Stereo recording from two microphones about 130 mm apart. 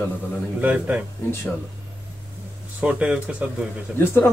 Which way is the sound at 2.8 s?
10° right (ahead or behind).